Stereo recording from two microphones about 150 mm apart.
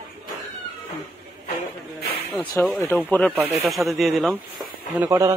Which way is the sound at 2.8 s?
15° left (ahead or behind).